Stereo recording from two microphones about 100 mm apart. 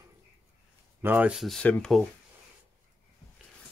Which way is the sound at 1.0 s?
20° right (ahead or behind).